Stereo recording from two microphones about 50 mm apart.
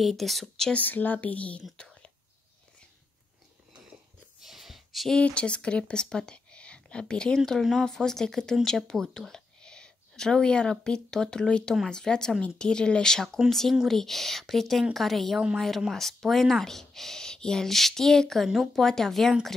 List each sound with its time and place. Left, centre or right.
0.0 s speech: centre
0.7 s speech: left
4.4 s a sound: centre
5.1 s speech: left; by 19.3 s centre